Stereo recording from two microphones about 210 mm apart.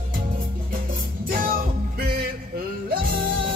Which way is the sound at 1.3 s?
40° right (ahead or behind).